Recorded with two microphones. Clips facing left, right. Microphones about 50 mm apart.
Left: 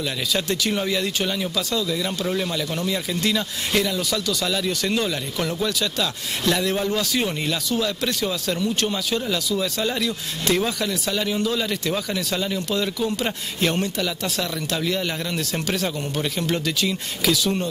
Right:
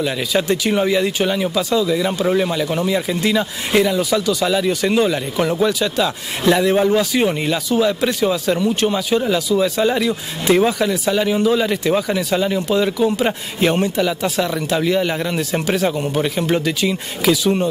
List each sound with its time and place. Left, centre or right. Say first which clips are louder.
0.0 s speech: right 6 dB; centre